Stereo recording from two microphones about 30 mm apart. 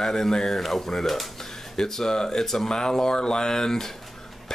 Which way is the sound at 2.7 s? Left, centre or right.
Left.